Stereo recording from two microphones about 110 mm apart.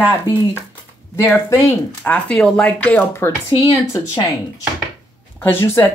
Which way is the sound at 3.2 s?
20° left (ahead or behind).